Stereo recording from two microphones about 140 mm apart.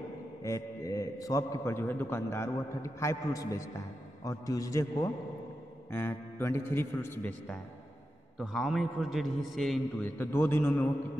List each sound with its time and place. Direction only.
0.4 s a man's voice: 20° left (ahead or behind)
8.4 s a man's voice: centre (ahead or behind)
10.0 s a man's voice: 15° left (ahead or behind)